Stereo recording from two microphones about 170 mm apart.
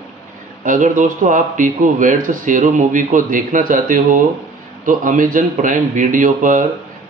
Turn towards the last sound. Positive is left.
turn(degrees=-50)  # may be behind; listen again after turning